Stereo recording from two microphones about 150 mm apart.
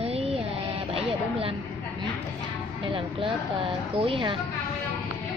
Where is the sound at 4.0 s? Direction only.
35° right (ahead or behind).